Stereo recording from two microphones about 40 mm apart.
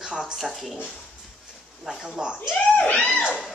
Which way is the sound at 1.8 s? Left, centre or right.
Centre.